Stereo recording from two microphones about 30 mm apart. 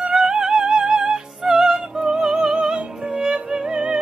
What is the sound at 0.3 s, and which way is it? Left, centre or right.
Music, right.